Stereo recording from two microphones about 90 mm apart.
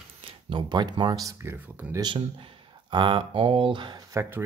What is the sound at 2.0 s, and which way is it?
Speech, 65° right (ahead or behind).